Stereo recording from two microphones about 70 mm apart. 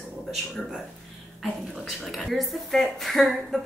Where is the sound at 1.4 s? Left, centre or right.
Centre.